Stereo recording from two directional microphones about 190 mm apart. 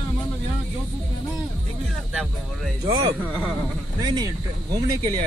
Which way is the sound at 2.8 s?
15° right (ahead or behind).